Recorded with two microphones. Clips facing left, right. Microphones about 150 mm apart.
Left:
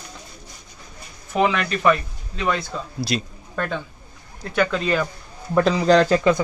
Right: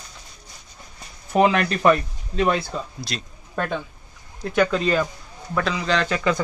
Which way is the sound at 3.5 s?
10° right (ahead or behind).